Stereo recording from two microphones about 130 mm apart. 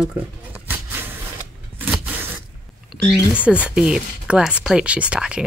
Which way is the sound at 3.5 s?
10° right (ahead or behind).